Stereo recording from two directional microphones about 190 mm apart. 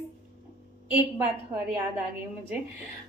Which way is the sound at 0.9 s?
10° right (ahead or behind).